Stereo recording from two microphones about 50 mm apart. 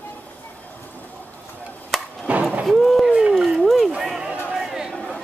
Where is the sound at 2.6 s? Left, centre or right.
Centre.